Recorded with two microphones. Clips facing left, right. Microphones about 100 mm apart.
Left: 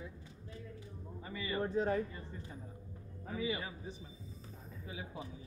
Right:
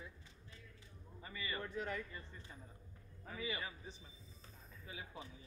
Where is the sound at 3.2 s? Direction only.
25° left (ahead or behind).